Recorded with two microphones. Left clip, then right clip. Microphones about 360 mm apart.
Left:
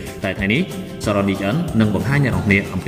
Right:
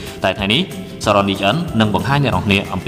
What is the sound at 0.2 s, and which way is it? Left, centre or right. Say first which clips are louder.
A man's voice: right 4 dB; centre.